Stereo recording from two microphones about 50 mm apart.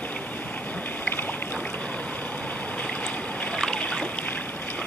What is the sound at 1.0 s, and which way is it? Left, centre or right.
Boat, left.